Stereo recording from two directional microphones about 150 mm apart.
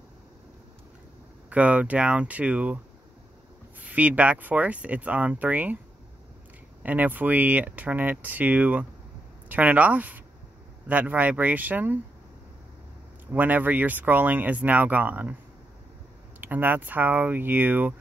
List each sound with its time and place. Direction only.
1.5 s speech: 10° right (ahead or behind)
3.8 s speech: 10° right (ahead or behind)
6.8 s speech: 10° right (ahead or behind)
13.3 s speech: 10° right (ahead or behind)
16.3 s speech: 10° right (ahead or behind)